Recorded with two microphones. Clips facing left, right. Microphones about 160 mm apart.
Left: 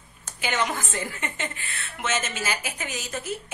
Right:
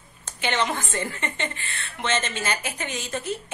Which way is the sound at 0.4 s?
5° left (ahead or behind).